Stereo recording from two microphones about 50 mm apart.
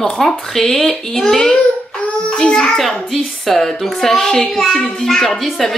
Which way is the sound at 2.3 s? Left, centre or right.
Centre.